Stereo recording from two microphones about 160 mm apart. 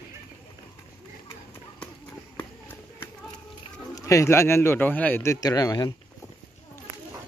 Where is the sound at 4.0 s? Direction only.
20° left (ahead or behind).